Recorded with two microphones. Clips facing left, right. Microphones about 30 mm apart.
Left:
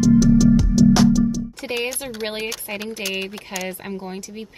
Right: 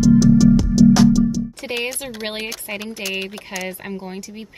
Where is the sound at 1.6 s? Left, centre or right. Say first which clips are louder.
Even; centre.